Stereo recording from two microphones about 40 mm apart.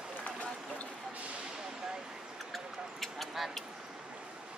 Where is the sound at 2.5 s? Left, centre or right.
Centre.